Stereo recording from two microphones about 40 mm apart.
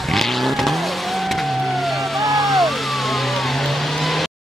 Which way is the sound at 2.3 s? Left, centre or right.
Centre.